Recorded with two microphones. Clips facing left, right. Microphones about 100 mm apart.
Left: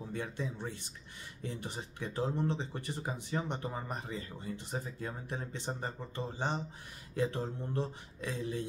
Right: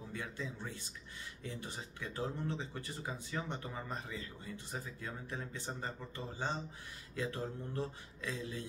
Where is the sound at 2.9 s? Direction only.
20° left (ahead or behind).